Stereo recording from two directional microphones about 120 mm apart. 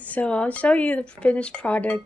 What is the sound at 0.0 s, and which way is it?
Speech, 10° left (ahead or behind).